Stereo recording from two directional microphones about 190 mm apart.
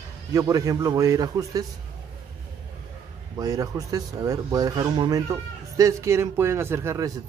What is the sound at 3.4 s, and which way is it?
Speech, 20° right (ahead or behind).